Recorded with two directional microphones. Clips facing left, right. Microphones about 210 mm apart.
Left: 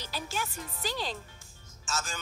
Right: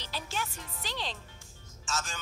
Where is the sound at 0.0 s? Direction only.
5° left (ahead or behind).